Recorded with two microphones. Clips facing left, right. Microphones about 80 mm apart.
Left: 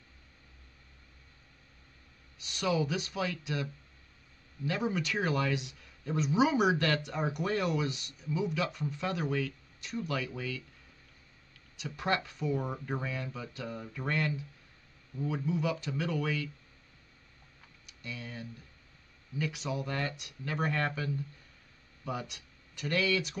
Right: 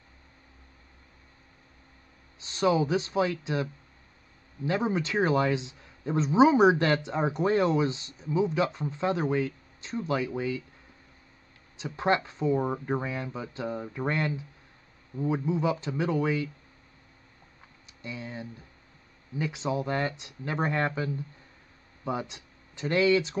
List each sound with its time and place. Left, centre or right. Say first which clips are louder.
2.4 s speech: right 6 dB; right
4.6 s speech: right 5 dB; right
11.7 s speech: right 6 dB; right
17.8 s speech: right 4 dB; right